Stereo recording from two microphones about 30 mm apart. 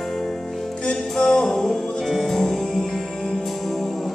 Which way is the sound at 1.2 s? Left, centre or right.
Left.